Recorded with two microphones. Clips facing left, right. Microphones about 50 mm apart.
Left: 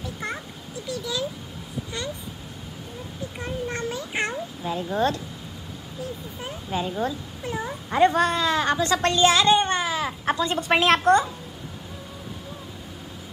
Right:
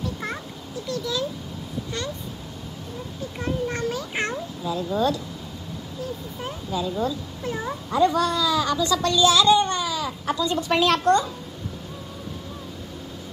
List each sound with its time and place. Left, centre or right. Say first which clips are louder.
0.0 s a sound: right 2 dB; centre
3.3 s a sound: right 3 dB; centre
4.6 s speech: right 1 dB; left
6.7 s speech: right 1 dB; left
7.4 s speech: right 1 dB; centre
7.9 s a woman's voice: left 1 dB; left
10.8 s a woman's voice: left 1 dB; left